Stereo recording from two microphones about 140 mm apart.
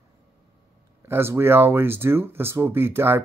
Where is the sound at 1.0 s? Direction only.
15° right (ahead or behind).